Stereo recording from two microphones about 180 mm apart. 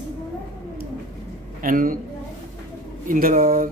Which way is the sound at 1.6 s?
50° right (ahead or behind).